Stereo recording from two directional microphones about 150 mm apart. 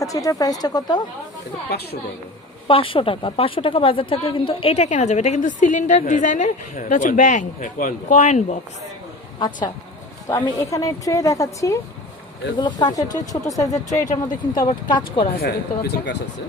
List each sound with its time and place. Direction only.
0.0 s a woman's voice: 25° left (ahead or behind)
2.7 s a woman's voice: 35° left (ahead or behind)
10.4 s a woman's voice: 20° left (ahead or behind)
13.8 s speech: 55° left (ahead or behind)
14.2 s a woman's voice: 25° left (ahead or behind)
15.3 s speech: 90° left